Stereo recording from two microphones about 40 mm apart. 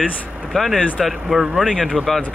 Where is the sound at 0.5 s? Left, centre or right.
Centre.